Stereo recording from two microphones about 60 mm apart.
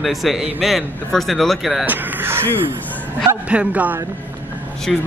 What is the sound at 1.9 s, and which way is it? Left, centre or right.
Speech, right.